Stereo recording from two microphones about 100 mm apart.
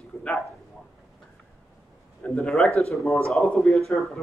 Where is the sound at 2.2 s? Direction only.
5° left (ahead or behind).